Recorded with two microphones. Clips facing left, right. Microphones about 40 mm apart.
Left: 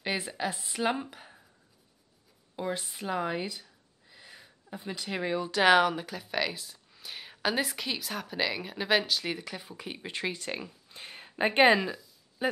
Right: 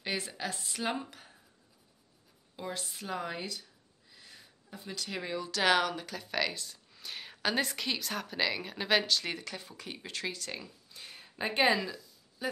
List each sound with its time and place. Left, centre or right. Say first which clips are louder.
0.0 s speech: left 4 dB; centre
2.5 s speech: left 6 dB; centre; by 12.4 s left